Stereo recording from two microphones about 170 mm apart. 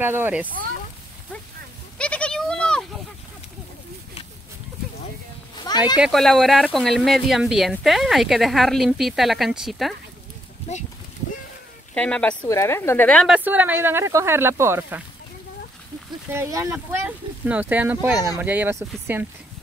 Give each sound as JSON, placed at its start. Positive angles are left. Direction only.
{"t": 0.0, "sound": "speech", "side_deg": -10}
{"t": 2.0, "sound": "goat", "side_deg": 5}
{"t": 5.9, "sound": "speech", "side_deg": 0}
{"t": 11.9, "sound": "speech", "side_deg": 5}
{"t": 13.4, "sound": "speech", "side_deg": -10}
{"t": 16.3, "sound": "speech", "side_deg": -15}